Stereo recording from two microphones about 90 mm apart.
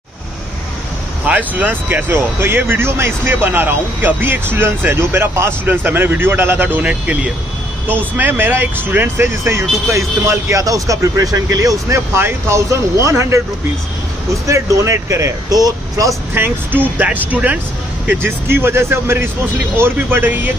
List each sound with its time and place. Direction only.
1.2 s speech: 15° right (ahead or behind); by 16.2 s 40° right (ahead or behind)
16.3 s speech: 20° right (ahead or behind)